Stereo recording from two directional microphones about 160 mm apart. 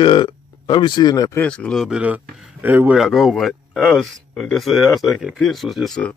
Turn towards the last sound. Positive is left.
turn(degrees=5)  # may be behind; listen again after turning